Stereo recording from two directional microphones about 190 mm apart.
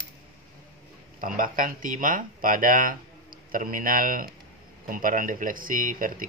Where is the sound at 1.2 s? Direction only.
45° right (ahead or behind).